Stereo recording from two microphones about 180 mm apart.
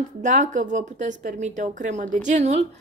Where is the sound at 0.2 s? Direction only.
45° right (ahead or behind).